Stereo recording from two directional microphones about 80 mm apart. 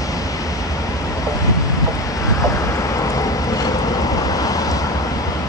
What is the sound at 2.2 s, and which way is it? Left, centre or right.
Vehicle, left.